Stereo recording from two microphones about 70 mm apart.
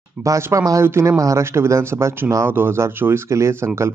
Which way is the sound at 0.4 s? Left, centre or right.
Right.